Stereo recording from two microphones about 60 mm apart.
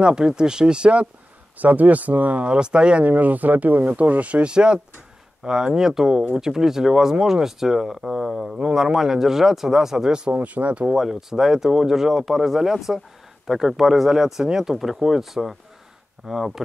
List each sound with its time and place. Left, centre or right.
0.0 s speech: centre
1.6 s speech: right
10.3 s speech: right
10.9 s speech: centre